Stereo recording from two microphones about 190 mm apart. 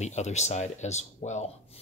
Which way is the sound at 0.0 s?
35° left (ahead or behind).